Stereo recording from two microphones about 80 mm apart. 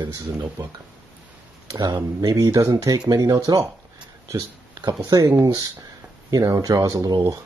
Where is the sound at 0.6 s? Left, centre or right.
Right.